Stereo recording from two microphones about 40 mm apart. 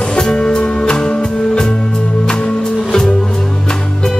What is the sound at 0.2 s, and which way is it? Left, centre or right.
Music, centre.